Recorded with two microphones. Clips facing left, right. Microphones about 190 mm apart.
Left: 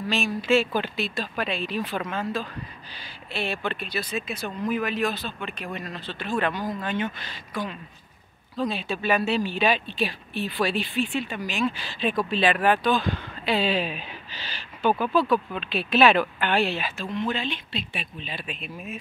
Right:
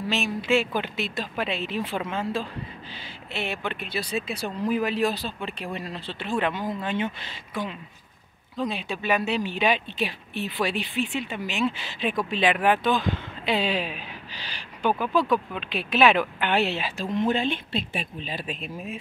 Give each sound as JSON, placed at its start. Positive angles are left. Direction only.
{"t": 0.5, "sound": "speech", "side_deg": -15}
{"t": 4.0, "sound": "speech", "side_deg": -30}
{"t": 8.5, "sound": "speech", "side_deg": -20}
{"t": 16.9, "sound": "speech", "side_deg": -40}